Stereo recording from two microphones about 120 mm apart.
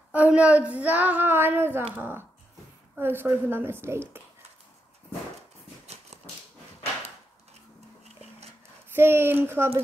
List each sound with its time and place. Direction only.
0.1 s child singing: 10° right (ahead or behind)
3.0 s a woman's voice: 20° right (ahead or behind)
8.9 s a woman's voice: 20° right (ahead or behind)